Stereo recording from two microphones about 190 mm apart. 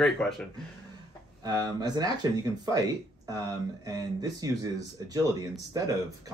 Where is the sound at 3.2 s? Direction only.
20° right (ahead or behind).